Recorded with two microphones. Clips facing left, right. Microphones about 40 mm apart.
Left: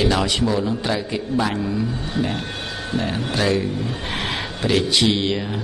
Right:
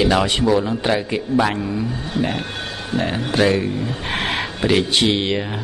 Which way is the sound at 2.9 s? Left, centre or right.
Right.